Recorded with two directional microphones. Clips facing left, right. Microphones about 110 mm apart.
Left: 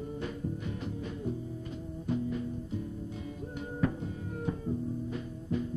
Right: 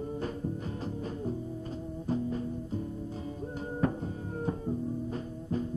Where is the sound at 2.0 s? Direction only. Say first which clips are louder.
Right 1 dB; 35° right (ahead or behind).